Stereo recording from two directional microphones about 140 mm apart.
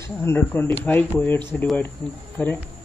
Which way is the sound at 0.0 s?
20° left (ahead or behind).